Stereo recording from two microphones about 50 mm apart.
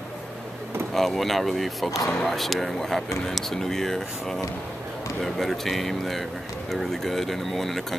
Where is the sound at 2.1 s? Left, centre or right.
Centre.